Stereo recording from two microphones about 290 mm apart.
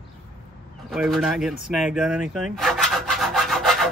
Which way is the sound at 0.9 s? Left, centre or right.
Centre.